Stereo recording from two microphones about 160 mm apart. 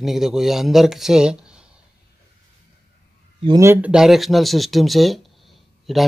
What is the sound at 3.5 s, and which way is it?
Speech, 15° right (ahead or behind).